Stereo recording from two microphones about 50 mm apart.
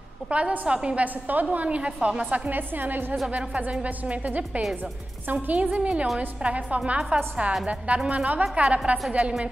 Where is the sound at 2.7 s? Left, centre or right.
Right.